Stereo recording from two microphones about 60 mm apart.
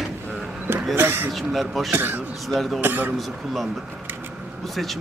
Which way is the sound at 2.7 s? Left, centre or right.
Right.